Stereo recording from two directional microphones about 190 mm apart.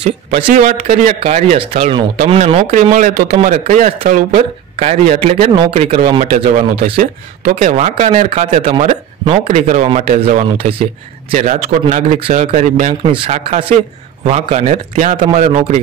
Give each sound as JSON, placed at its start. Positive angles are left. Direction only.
{"t": 0.5, "sound": "speech", "side_deg": -40}
{"t": 4.7, "sound": "speech", "side_deg": -35}
{"t": 7.0, "sound": "speech", "side_deg": -45}